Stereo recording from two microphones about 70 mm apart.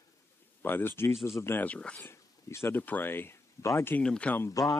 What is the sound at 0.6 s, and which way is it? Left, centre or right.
Speech, left.